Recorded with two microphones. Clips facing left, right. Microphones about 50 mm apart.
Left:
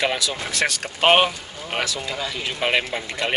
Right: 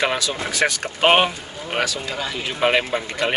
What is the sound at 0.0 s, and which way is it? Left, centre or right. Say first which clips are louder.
Speech: right 2 dB; centre.